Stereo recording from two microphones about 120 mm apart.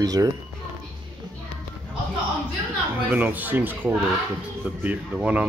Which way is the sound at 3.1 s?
15° right (ahead or behind).